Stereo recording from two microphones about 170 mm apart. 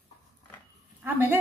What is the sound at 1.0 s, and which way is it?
Speech, 10° right (ahead or behind).